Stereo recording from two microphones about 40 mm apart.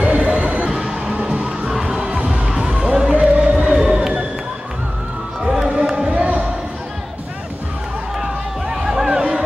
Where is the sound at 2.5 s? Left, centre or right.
Right.